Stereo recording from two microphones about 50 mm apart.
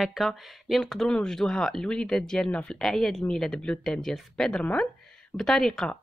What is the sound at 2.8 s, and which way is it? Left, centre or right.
A woman's voice, centre.